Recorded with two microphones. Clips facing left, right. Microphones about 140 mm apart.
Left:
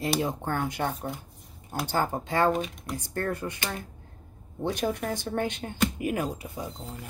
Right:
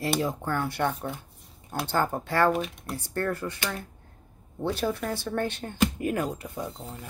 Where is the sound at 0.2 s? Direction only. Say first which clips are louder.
Even; 25° left (ahead or behind); by 7.0 s 5° left (ahead or behind).